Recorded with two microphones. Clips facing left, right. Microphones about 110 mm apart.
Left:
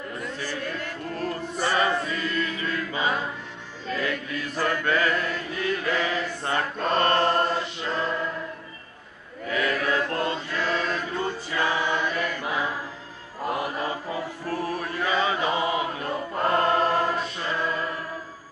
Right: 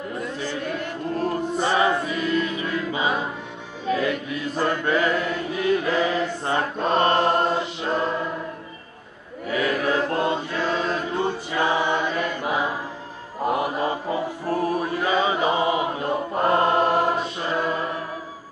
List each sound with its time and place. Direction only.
0.2 s choir: 20° right (ahead or behind)
3.9 s chant: 15° right (ahead or behind)
5.9 s mantra: 25° right (ahead or behind)
9.5 s choir: 20° right (ahead or behind)
13.5 s chant: 20° right (ahead or behind)